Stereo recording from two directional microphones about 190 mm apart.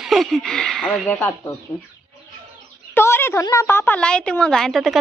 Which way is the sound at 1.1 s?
15° left (ahead or behind).